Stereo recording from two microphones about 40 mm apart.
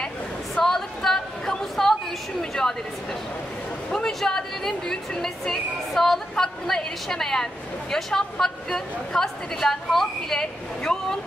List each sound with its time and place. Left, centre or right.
0.7 s chatter: centre
3.9 s a woman's voice: centre
10.8 s speech: left